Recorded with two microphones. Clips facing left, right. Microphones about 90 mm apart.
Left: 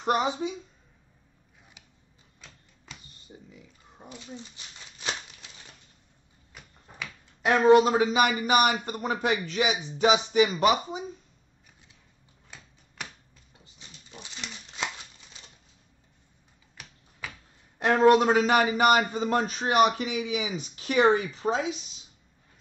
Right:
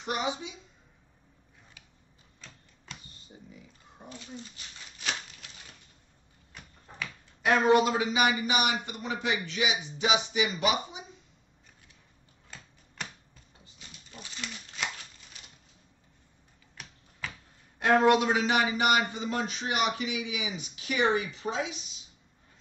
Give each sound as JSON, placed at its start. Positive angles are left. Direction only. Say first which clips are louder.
{"t": 0.0, "sound": "a sound", "louder": "left 6 dB", "side_deg": 45}
{"t": 3.3, "sound": "a sound", "louder": "left 3 dB", "side_deg": 20}
{"t": 7.4, "sound": "speech", "louder": "left 4 dB", "side_deg": 35}
{"t": 8.1, "sound": "speech", "louder": "left 4 dB", "side_deg": 50}
{"t": 13.7, "sound": "dog", "louder": "left 1 dB", "side_deg": 20}
{"t": 17.7, "sound": "speech", "louder": "left 3 dB", "side_deg": 35}